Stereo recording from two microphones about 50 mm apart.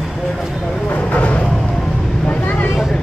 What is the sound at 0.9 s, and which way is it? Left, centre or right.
Vehicle, left.